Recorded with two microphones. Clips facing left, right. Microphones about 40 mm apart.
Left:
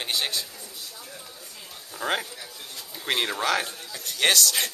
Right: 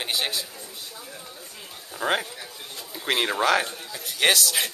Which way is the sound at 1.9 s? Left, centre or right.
Centre.